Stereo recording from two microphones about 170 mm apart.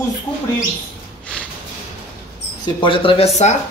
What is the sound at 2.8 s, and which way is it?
Speech, 30° left (ahead or behind).